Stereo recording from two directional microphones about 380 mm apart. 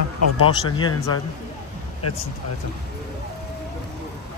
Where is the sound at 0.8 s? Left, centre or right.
Centre.